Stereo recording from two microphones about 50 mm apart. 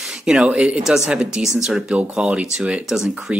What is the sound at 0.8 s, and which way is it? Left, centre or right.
Speech, centre.